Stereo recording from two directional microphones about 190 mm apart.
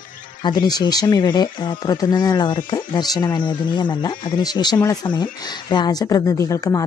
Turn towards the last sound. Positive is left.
turn(degrees=15)  # may be behind; listen again after turning